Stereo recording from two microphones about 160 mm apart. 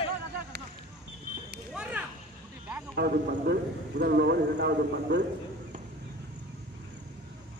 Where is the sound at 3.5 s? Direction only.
90° right.